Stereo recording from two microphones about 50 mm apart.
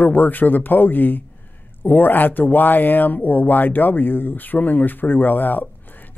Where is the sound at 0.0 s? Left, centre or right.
Left.